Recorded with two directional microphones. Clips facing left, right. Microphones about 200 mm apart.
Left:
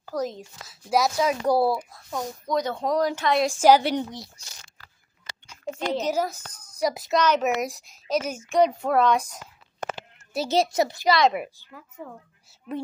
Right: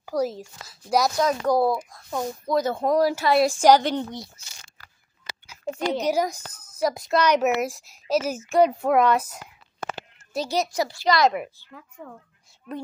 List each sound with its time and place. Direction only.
0.0 s speech: 10° right (ahead or behind); by 1.8 s 5° left (ahead or behind)
1.9 s speech: 5° right (ahead or behind)
3.6 s speech: 10° left (ahead or behind)
5.5 s a child's voice: 10° right (ahead or behind)
7.2 s speech: 10° right (ahead or behind)
10.5 s a child's voice: 25° left (ahead or behind)
11.1 s speech: centre (ahead or behind)
11.3 s speech: 10° left (ahead or behind)